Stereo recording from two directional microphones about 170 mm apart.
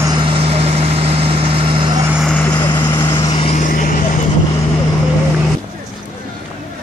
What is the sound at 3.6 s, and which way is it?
Vehicle, 50° left (ahead or behind).